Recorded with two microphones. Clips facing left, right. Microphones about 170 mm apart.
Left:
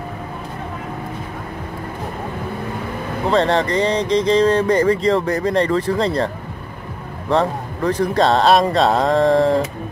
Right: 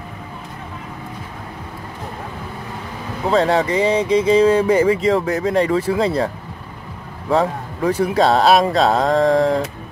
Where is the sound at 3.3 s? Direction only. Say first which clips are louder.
Right 1 dB; 5° right (ahead or behind).